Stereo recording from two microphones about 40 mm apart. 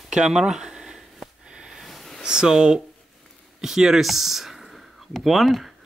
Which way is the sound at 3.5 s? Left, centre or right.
Centre.